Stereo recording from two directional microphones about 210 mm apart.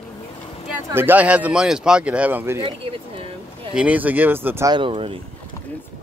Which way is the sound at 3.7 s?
5° right (ahead or behind).